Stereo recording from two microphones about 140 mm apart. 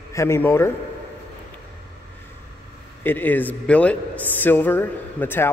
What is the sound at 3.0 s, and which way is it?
A man's voice, 15° left (ahead or behind).